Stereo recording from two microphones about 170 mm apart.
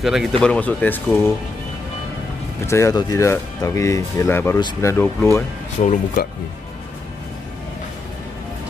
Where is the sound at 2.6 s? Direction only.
15° left (ahead or behind).